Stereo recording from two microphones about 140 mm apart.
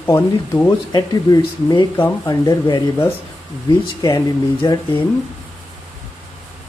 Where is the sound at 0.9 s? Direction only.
30° left (ahead or behind).